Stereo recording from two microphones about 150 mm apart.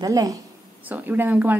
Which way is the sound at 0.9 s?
10° right (ahead or behind).